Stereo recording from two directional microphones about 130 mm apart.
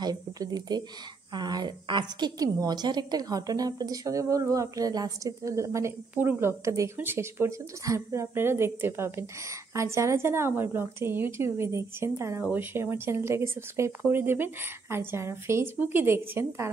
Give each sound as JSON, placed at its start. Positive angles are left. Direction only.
{"t": 0.0, "sound": "a woman's voice", "side_deg": -30}